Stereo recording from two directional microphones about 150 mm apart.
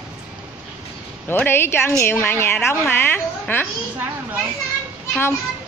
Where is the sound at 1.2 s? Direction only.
15° left (ahead or behind).